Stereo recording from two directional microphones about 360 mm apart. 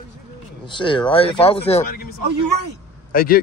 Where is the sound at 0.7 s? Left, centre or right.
Centre.